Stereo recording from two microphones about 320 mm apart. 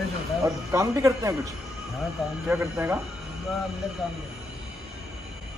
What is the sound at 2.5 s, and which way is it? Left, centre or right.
Speech, centre.